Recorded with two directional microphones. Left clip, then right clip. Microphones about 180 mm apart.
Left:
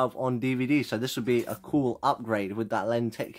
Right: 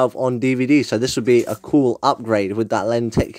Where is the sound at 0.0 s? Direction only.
35° right (ahead or behind).